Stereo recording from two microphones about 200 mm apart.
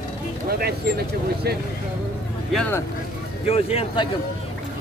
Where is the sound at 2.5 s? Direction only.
5° left (ahead or behind).